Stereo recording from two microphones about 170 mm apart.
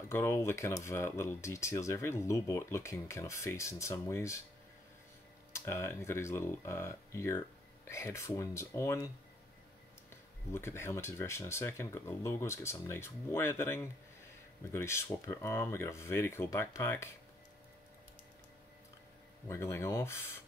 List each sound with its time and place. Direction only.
0.1 s speech: 15° left (ahead or behind)
5.5 s speech: 15° left (ahead or behind)
10.5 s speech: 15° left (ahead or behind)
19.4 s speech: 15° left (ahead or behind)